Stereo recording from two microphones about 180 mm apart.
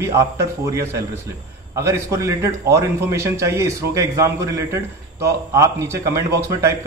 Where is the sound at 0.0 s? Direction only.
15° right (ahead or behind).